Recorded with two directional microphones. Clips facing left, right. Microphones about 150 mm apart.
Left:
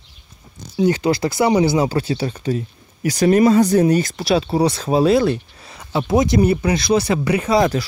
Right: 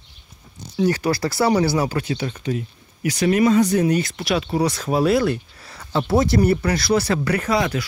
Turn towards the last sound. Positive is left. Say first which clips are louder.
# left 5 dB
turn(degrees=35)  # may be behind; listen again after turning